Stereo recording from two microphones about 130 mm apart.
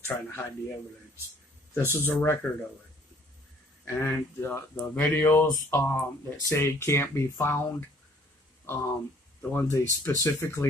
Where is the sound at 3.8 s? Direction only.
20° left (ahead or behind).